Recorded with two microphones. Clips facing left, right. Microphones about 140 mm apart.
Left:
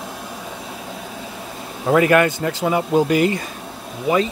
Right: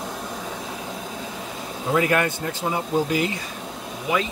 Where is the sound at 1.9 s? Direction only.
70° left (ahead or behind); by 3.2 s 85° left.